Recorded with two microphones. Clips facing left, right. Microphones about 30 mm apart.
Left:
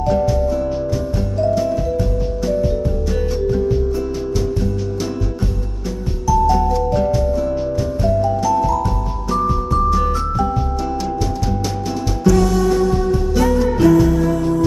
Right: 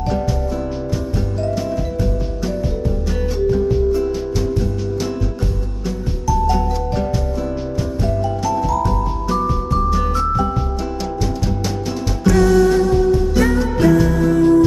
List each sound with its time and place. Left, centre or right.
8.8 s music: centre
12.3 s music: right
13.5 s music: centre